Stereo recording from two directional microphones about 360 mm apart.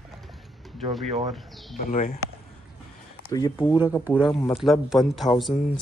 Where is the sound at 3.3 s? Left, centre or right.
Centre.